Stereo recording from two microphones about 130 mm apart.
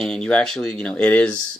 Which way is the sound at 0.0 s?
5° left (ahead or behind).